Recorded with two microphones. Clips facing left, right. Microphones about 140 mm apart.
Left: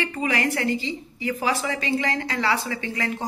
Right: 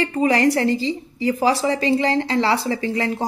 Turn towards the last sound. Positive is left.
turn(degrees=-30)  # may be behind; listen again after turning